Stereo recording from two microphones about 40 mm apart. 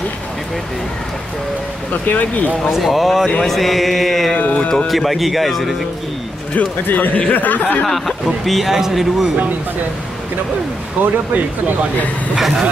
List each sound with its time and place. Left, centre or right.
2.0 s speech: left
2.7 s speech: centre
4.6 s speech: left
4.8 s speech: centre
6.9 s speech: left
8.5 s speech: centre
11.0 s speech: right
12.4 s speech: centre